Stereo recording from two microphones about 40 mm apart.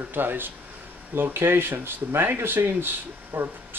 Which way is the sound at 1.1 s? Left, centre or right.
Right.